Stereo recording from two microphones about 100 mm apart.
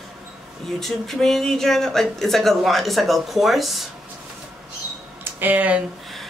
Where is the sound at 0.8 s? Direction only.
5° left (ahead or behind).